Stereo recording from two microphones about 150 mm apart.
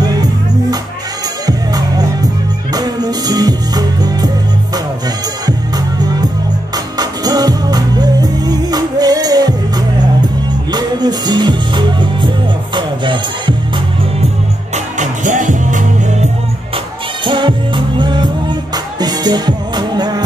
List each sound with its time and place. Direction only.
0.0 s music: 25° right (ahead or behind)
7.0 s music: 25° right (ahead or behind)
15.0 s music: 55° right (ahead or behind)
16.7 s music: 30° right (ahead or behind)